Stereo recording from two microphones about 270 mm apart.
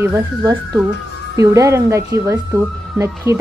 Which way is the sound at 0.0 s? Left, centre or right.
Centre.